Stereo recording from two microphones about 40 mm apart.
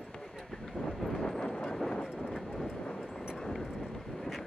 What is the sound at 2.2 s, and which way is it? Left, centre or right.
Train, centre.